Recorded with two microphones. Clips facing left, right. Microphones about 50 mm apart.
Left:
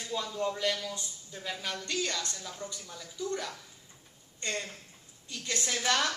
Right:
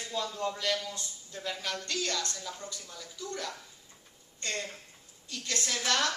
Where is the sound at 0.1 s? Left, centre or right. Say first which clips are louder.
Left 1 dB; centre.